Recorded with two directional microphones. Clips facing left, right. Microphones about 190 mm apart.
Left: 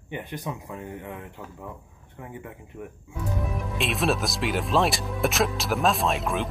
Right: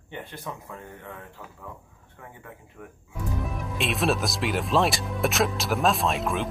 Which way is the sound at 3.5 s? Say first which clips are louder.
Even; centre (ahead or behind).